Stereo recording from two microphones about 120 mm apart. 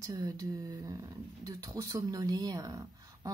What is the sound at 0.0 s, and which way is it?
Speech, 30° right (ahead or behind).